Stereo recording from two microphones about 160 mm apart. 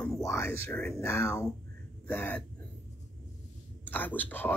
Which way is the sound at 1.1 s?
20° left (ahead or behind).